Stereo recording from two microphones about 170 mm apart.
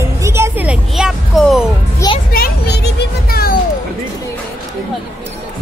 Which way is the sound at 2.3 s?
70° left (ahead or behind).